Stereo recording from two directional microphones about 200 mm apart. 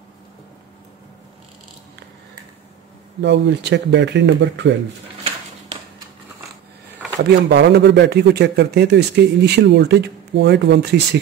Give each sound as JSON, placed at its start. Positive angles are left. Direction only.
{"t": 3.2, "sound": "a man's voice", "side_deg": -60}
{"t": 7.2, "sound": "a man's voice", "side_deg": -55}